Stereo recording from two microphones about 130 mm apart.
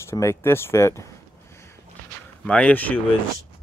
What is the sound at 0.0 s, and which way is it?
Speech, 20° left (ahead or behind).